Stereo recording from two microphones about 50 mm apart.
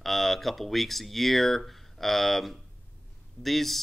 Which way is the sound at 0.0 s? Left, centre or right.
Centre.